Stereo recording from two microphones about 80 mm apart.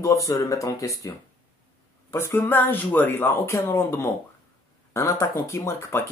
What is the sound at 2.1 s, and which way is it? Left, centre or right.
Speech, left.